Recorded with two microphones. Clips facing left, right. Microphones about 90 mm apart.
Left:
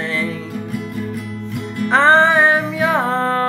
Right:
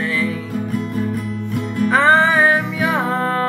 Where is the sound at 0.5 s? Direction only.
40° right (ahead or behind).